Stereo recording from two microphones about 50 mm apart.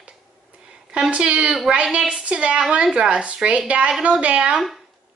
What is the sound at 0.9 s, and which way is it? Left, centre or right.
Speech, centre.